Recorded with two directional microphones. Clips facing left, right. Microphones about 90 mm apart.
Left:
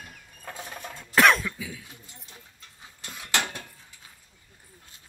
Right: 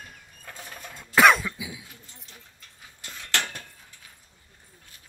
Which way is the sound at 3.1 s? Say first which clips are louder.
Left 1 dB; 10° left (ahead or behind).